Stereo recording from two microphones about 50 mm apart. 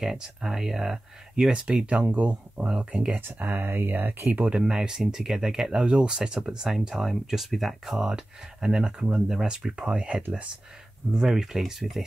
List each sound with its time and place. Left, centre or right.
0.0 s speech: centre
1.5 s speech: right
3.3 s speech: right
4.5 s speech: centre
8.6 s speech: centre
11.1 s speech: centre